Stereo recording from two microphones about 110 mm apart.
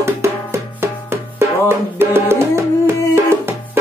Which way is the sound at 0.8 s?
20° right (ahead or behind).